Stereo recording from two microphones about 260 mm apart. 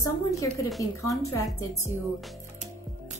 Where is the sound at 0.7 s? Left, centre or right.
Centre.